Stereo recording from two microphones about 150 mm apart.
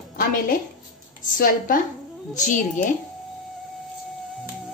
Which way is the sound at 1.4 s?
70° left (ahead or behind).